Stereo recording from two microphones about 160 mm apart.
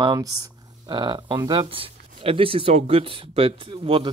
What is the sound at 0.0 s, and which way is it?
Speech, 25° right (ahead or behind).